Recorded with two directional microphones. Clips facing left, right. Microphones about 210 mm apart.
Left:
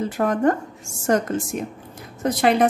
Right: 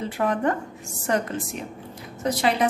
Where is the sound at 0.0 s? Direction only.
45° left (ahead or behind).